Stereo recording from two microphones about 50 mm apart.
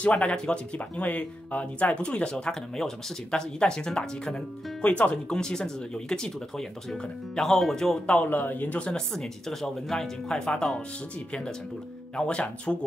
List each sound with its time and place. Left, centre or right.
0.1 s speech: left
4.8 s speech: left; by 8.0 s centre
8.3 s a man's voice: left
8.9 s speech: centre
12.2 s speech: left